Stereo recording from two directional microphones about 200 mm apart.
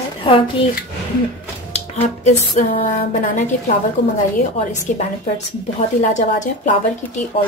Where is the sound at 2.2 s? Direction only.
35° left (ahead or behind).